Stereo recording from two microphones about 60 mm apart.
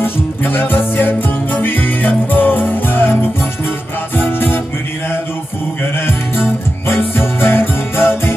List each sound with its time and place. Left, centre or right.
0.0 s music: left
7.0 s music: left